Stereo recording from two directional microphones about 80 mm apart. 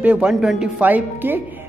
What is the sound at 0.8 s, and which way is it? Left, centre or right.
Speech, right.